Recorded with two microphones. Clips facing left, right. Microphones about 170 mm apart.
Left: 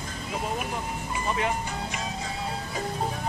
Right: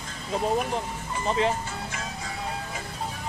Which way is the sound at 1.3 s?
30° right (ahead or behind).